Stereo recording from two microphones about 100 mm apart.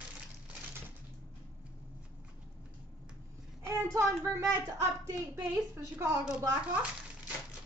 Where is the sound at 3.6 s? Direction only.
30° right (ahead or behind).